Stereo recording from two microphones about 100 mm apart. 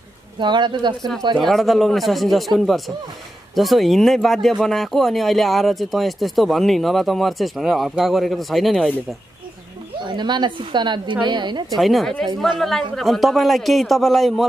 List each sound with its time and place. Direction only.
0.4 s a woman's voice: 50° right (ahead or behind)
1.4 s speech: centre (ahead or behind)
10.0 s a woman's voice: 50° right (ahead or behind)
11.7 s speech: centre (ahead or behind)